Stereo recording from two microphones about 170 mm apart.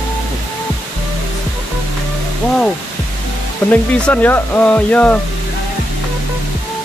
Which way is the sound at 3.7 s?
10° left (ahead or behind).